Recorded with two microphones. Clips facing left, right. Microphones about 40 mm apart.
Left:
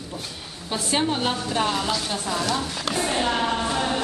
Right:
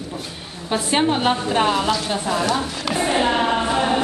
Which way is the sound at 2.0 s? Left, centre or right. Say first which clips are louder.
Right 5 dB; centre.